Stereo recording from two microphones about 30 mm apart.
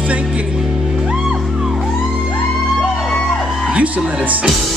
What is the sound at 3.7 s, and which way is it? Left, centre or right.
Speech, right.